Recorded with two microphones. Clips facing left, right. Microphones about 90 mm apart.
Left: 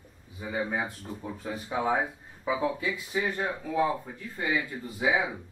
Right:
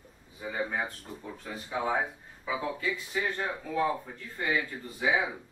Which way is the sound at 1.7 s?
30° left (ahead or behind).